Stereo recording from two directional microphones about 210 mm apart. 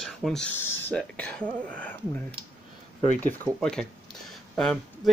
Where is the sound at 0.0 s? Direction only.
Centre (ahead or behind).